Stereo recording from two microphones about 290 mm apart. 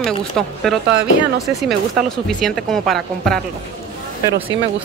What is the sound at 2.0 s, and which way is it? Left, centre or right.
A woman's voice, centre.